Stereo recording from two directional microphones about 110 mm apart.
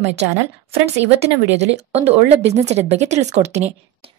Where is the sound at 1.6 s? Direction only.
75° right (ahead or behind).